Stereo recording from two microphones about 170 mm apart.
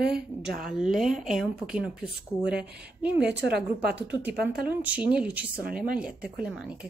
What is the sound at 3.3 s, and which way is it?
Speech, 80° right.